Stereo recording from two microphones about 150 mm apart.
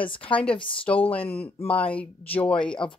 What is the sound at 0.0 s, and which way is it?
Speech, 35° left (ahead or behind).